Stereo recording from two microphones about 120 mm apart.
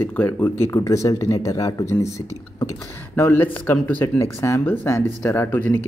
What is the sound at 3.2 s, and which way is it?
Speech, 20° left (ahead or behind).